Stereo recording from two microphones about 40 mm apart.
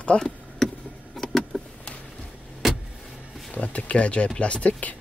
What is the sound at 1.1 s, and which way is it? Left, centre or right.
Vehicle, centre.